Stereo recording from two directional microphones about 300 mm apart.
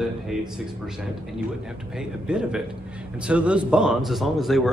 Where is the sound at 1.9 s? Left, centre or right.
Centre.